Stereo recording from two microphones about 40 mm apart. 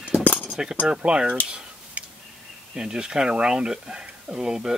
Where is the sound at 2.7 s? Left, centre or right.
Centre.